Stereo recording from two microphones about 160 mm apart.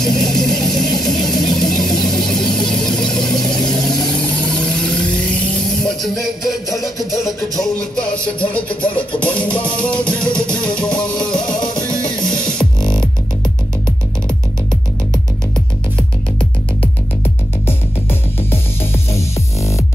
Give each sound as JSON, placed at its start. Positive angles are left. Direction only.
{"t": 0.0, "sound": "vehicle", "side_deg": 5}
{"t": 5.9, "sound": "music", "side_deg": 0}
{"t": 9.2, "sound": "music", "side_deg": 10}
{"t": 18.5, "sound": "music", "side_deg": 15}